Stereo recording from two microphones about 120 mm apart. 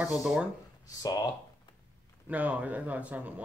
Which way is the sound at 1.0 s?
30° left (ahead or behind).